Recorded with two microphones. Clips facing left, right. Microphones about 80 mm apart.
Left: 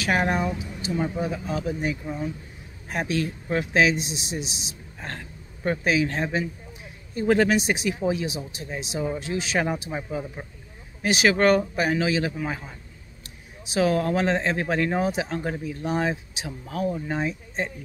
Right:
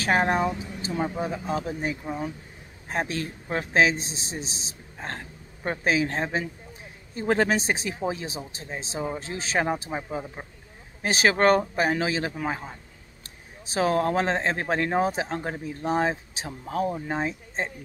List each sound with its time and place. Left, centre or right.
0.0 s speech: right
0.9 s speech: centre
1.2 s speech: right
5.2 s a sound: centre
5.9 s speech: right; by 10.4 s centre
11.0 s speech: right